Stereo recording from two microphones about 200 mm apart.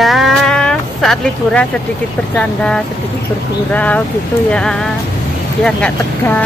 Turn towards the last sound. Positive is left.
turn(degrees=5)  # may be behind; listen again after turning